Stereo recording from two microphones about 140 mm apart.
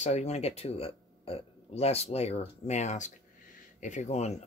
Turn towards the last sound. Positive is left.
turn(degrees=50)  # may be behind; listen again after turning